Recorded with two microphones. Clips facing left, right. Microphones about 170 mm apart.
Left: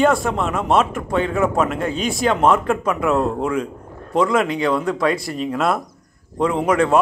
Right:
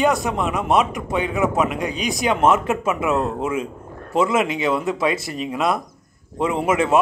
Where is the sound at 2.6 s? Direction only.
5° right (ahead or behind).